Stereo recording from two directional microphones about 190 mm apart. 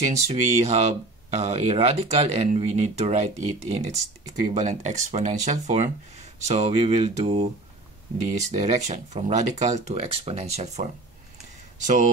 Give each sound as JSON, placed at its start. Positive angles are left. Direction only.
{"t": 0.0, "sound": "speech", "side_deg": -35}